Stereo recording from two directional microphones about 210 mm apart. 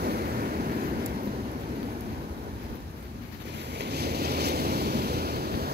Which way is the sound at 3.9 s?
50° right (ahead or behind).